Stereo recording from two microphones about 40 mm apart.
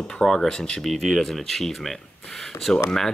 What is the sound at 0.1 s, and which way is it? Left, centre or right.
Speech, centre.